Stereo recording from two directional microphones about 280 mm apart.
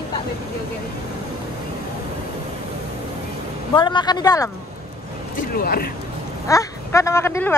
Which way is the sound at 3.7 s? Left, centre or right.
Centre.